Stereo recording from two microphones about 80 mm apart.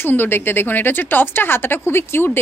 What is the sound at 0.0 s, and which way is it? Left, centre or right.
Speech, left.